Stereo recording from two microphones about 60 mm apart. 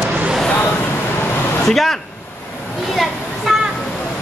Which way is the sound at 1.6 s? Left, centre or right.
Centre.